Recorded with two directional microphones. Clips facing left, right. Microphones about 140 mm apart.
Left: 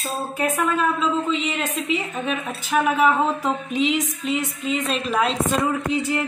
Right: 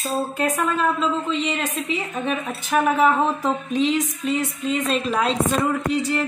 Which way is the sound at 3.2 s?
15° left (ahead or behind).